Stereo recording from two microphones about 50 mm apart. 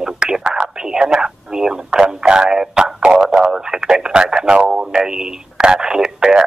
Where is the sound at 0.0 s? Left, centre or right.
Centre.